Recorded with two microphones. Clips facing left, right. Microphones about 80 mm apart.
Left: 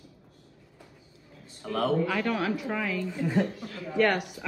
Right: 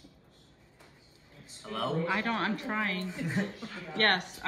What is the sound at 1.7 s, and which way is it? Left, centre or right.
Speech, left.